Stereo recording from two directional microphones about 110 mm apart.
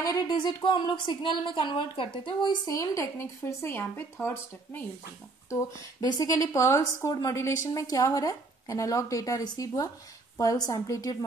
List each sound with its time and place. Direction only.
0.0 s a woman's voice: 35° left (ahead or behind)